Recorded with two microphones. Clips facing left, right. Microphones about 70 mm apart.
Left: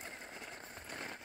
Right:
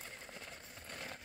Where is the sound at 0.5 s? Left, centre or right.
Left.